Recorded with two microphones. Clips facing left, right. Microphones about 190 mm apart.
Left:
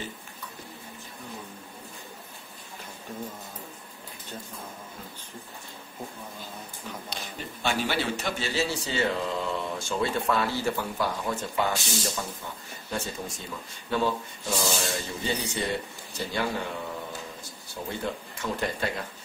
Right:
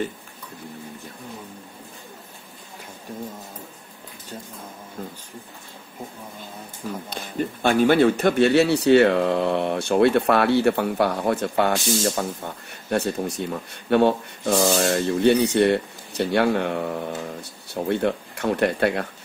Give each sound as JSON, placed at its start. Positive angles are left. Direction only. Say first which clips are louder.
{"t": 7.1, "sound": "speech", "louder": "right 10 dB", "side_deg": -50}